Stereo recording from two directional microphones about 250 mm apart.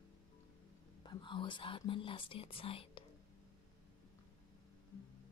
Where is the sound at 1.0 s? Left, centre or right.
Centre.